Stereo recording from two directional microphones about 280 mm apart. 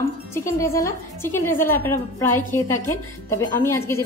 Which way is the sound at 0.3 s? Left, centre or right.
Centre.